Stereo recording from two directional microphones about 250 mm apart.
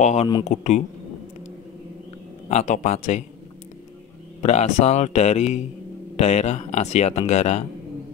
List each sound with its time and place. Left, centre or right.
0.0 s speech: left
2.5 s speech: left
4.4 s speech: left